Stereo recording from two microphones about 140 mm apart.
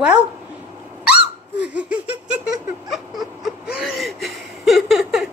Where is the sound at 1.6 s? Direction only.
10° right (ahead or behind).